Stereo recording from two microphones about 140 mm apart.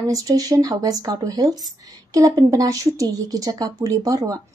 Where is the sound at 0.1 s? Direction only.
25° right (ahead or behind).